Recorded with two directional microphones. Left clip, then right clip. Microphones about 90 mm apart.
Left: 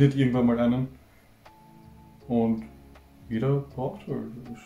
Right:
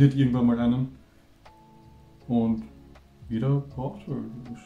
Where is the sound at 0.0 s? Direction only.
Centre (ahead or behind).